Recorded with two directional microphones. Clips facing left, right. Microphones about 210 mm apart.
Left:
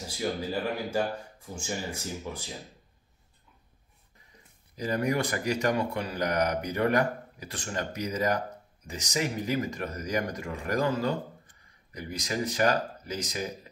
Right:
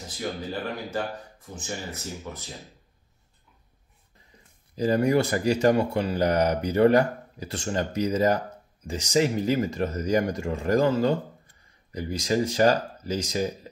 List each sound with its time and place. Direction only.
0.9 s speech: 10° left (ahead or behind)
4.7 s speech: 30° right (ahead or behind)